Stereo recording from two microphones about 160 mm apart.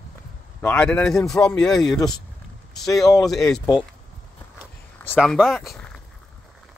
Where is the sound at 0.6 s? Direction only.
10° left (ahead or behind).